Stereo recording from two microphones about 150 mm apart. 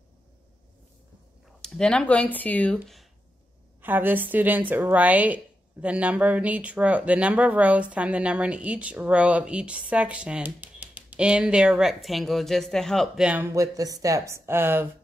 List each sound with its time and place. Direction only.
1.6 s speech: 5° left (ahead or behind)
3.8 s a woman's voice: 10° right (ahead or behind); by 13.2 s 5° left (ahead or behind)
13.2 s speech: 10° right (ahead or behind)